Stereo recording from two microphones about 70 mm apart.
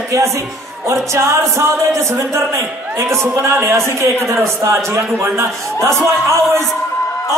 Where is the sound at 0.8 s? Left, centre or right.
Right.